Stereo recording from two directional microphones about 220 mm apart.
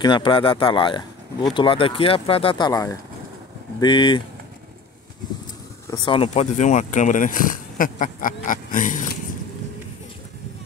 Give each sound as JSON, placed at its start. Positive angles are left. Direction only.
{"t": 0.0, "sound": "speech", "side_deg": 20}
{"t": 5.9, "sound": "speech", "side_deg": 20}